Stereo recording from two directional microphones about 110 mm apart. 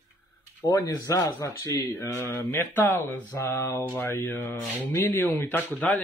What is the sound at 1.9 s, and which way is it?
Mantra, 25° left (ahead or behind).